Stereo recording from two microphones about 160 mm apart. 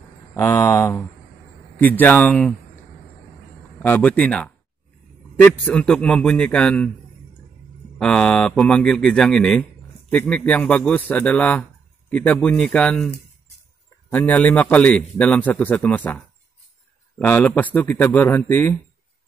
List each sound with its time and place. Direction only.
0.4 s a man's voice: 15° left (ahead or behind)
3.8 s a man's voice: 10° left (ahead or behind)
8.0 s a man's voice: 5° left (ahead or behind)
14.1 s a man's voice: 10° left (ahead or behind)
17.2 s a man's voice: 10° left (ahead or behind)